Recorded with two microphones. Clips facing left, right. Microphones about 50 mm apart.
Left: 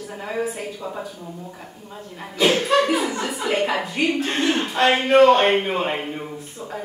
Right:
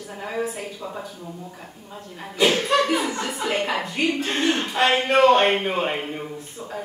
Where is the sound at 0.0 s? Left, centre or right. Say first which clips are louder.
Left 2 dB; centre.